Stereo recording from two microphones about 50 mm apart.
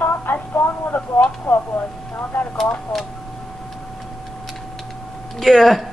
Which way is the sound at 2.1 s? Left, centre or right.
Left.